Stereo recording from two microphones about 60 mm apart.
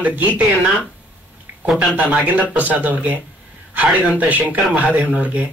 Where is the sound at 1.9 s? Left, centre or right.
Right.